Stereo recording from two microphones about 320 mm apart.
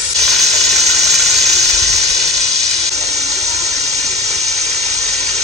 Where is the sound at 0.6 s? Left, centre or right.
Centre.